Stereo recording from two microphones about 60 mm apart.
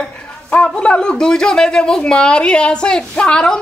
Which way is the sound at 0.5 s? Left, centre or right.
Centre.